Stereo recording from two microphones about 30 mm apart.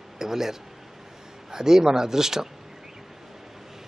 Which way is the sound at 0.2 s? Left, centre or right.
Centre.